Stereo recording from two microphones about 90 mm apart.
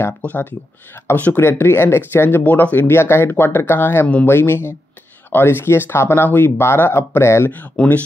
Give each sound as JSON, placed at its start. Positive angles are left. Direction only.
{"t": 0.2, "sound": "speech", "side_deg": 20}
{"t": 7.7, "sound": "speech", "side_deg": 15}